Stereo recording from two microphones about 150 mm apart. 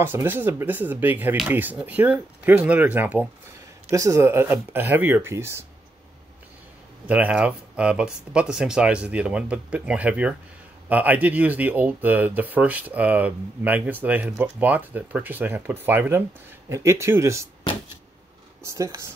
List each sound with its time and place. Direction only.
0.0 s speech: 15° right (ahead or behind)
7.1 s speech: 10° right (ahead or behind)
18.6 s speech: 20° right (ahead or behind)